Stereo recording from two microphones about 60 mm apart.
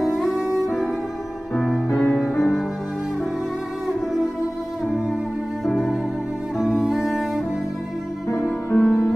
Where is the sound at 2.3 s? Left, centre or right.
Centre.